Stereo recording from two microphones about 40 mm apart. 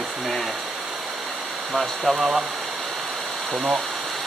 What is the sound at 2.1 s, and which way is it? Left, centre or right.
Speech, centre.